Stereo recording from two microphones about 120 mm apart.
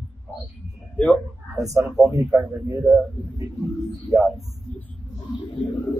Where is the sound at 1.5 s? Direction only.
30° right (ahead or behind).